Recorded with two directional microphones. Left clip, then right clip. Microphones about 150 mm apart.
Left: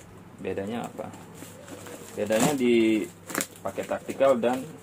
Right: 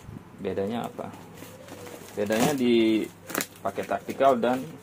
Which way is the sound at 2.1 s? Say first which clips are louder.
Even; 45° right (ahead or behind).